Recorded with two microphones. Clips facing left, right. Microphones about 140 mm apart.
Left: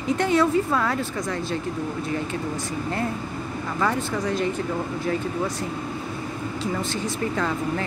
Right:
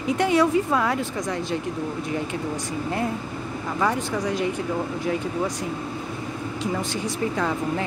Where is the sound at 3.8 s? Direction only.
15° right (ahead or behind).